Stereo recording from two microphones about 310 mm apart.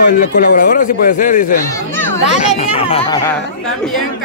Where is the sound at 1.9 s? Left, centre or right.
Centre.